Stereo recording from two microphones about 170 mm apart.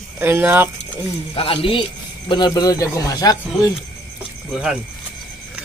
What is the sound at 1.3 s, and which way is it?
A man's voice, 30° left (ahead or behind).